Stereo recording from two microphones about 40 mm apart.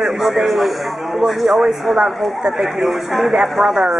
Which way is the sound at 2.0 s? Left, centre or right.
Right.